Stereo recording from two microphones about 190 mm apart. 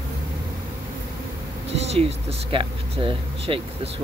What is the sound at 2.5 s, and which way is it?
Speech, 25° right (ahead or behind).